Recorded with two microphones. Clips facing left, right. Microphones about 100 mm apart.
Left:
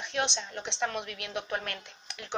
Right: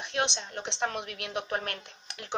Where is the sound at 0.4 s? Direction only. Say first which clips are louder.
Even; 45° right (ahead or behind).